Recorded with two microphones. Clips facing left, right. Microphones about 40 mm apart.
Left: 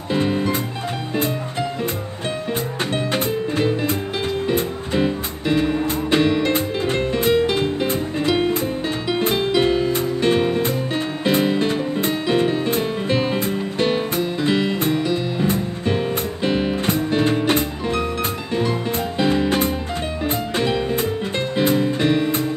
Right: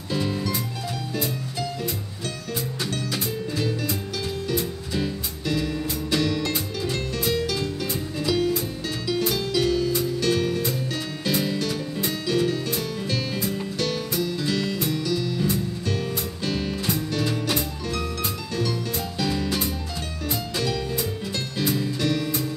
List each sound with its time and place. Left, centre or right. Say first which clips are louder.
0.1 s music: left 6 dB; left
2.9 s music: left 7 dB; left